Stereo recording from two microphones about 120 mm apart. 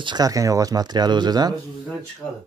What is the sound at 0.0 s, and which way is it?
Speech, 35° right (ahead or behind).